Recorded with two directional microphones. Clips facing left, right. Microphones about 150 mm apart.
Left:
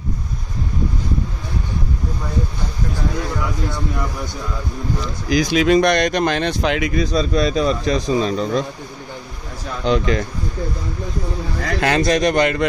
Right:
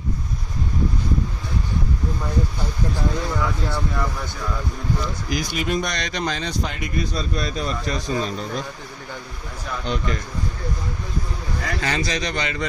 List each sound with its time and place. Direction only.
5.3 s speech: 90° left
5.9 s speech: 55° left (ahead or behind); by 8.5 s 90° left
9.8 s speech: 90° left
11.8 s speech: 55° left (ahead or behind)